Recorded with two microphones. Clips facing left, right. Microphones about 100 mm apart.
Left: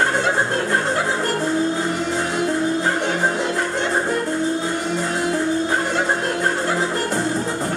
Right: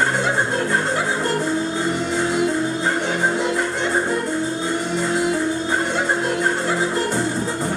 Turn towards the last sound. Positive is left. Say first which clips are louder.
# even
turn(degrees=0)  # may be behind; listen again after turning